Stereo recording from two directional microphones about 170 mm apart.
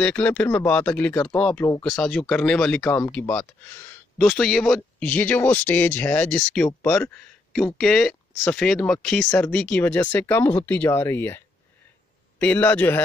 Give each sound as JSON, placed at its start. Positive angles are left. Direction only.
{"t": 0.0, "sound": "speech", "side_deg": 5}